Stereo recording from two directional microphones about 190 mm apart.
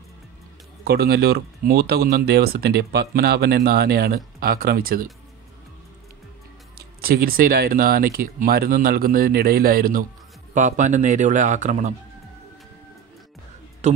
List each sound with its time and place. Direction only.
0.8 s speech: 55° right (ahead or behind)
7.0 s a man's voice: 55° right (ahead or behind)
13.8 s a man's voice: 35° right (ahead or behind)